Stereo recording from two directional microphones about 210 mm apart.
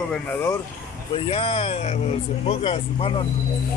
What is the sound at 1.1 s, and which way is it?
Speech, 25° left (ahead or behind).